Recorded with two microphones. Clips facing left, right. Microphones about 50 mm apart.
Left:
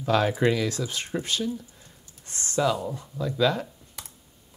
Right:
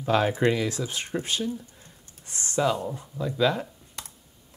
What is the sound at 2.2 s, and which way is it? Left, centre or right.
Speech, left.